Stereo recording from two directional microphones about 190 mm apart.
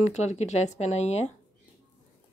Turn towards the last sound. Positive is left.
turn(degrees=35)  # may be behind; listen again after turning